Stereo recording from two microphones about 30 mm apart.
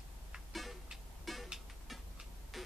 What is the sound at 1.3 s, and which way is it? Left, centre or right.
Music, centre.